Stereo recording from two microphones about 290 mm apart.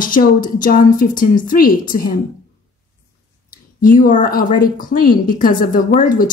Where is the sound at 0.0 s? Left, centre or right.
Left.